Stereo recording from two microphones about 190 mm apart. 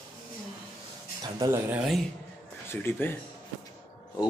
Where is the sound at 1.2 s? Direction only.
20° right (ahead or behind).